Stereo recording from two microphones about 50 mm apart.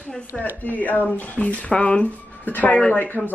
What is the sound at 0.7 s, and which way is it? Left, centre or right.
Speech, left.